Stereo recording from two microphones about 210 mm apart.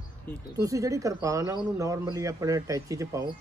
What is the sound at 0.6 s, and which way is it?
A man's voice, 15° right (ahead or behind).